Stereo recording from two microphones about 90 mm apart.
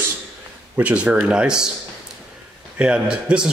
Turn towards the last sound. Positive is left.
turn(degrees=-10)  # may be behind; listen again after turning